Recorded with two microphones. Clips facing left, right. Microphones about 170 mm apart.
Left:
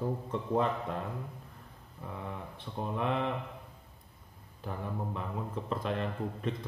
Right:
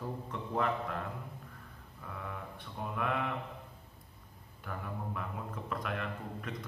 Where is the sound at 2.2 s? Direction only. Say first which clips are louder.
Left 2 dB; 25° left (ahead or behind).